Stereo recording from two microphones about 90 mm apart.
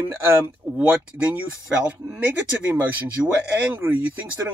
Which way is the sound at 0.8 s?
15° right (ahead or behind).